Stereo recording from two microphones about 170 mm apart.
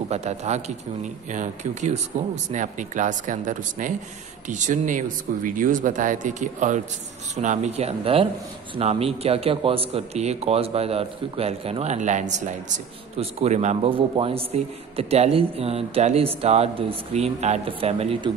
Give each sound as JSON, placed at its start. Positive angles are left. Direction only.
{"t": 0.1, "sound": "speech", "side_deg": -40}